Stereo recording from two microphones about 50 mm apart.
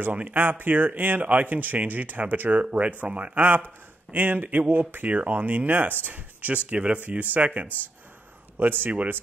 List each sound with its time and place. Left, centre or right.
0.0 s speech: right